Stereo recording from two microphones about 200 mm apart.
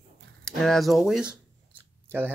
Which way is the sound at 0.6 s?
Centre (ahead or behind).